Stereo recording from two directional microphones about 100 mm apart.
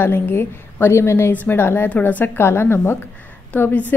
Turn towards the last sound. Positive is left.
turn(degrees=15)  # may be behind; listen again after turning